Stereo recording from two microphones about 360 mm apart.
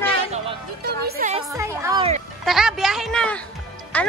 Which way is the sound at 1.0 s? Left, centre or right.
Right.